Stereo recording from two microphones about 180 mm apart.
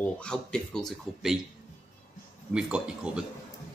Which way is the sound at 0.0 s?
5° left (ahead or behind).